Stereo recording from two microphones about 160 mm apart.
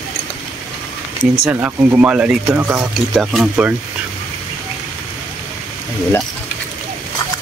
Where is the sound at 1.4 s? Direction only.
10° right (ahead or behind).